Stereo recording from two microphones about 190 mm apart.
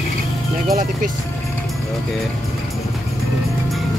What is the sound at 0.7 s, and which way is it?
Speech, 45° right (ahead or behind).